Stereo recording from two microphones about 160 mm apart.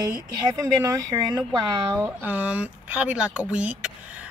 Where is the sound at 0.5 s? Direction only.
20° right (ahead or behind).